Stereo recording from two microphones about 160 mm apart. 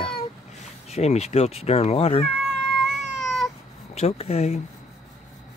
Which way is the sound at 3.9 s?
40° left (ahead or behind).